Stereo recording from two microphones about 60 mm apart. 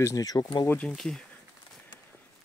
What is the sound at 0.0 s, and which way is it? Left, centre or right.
Speech, left.